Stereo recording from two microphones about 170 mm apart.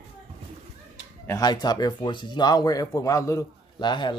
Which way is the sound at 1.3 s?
25° left (ahead or behind).